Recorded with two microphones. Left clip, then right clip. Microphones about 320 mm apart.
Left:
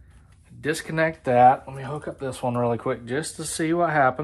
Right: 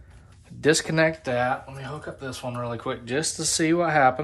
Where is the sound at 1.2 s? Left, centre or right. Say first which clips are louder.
Left 9 dB; centre.